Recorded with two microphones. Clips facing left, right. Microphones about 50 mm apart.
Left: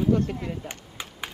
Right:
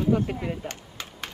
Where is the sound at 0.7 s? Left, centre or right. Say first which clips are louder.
Even; centre.